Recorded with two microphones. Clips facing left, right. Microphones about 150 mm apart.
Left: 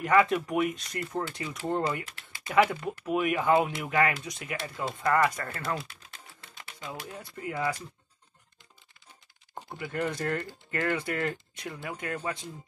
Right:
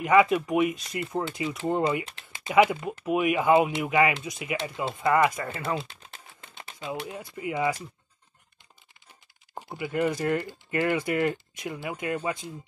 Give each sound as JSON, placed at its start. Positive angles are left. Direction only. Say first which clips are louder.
{"t": 0.0, "sound": "speech", "louder": "right 3 dB", "side_deg": -10}
{"t": 1.9, "sound": "speech", "louder": "right 5 dB", "side_deg": -20}
{"t": 2.5, "sound": "speech", "louder": "right 3 dB", "side_deg": -10}
{"t": 6.5, "sound": "typewriter", "louder": "right 4 dB", "side_deg": -20}
{"t": 7.0, "sound": "speech", "louder": "right 5 dB", "side_deg": -15}
{"t": 9.6, "sound": "speech", "louder": "right 5 dB", "side_deg": -10}